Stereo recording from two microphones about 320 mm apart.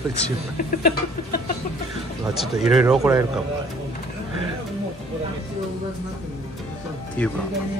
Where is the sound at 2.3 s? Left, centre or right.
Centre.